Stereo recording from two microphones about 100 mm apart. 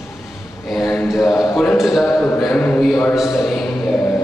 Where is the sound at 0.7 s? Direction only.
10° left (ahead or behind).